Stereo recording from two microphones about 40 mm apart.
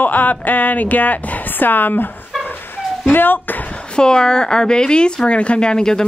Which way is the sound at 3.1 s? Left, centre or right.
Left.